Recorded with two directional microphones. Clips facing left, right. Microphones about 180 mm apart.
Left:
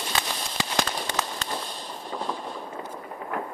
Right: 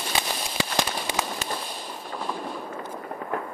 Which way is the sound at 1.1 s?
10° right (ahead or behind).